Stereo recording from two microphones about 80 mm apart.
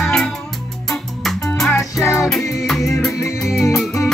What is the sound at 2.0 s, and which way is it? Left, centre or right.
Music, left.